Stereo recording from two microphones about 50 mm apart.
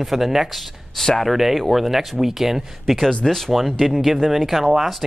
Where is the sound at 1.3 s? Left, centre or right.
Centre.